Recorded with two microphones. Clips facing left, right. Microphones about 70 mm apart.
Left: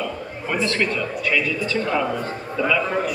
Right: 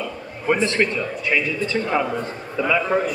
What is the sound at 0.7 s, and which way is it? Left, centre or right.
A man's voice, right.